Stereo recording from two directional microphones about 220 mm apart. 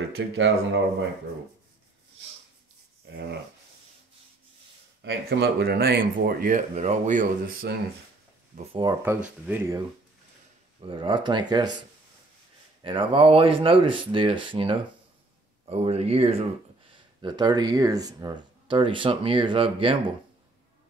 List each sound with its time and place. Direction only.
0.2 s speech: 55° right (ahead or behind)
3.1 s speech: 45° right (ahead or behind)
5.0 s speech: 45° right (ahead or behind)
8.5 s speech: 20° right (ahead or behind)
9.0 s speech: 10° right (ahead or behind)
10.8 s speech: 20° right (ahead or behind)
12.8 s speech: 25° right (ahead or behind)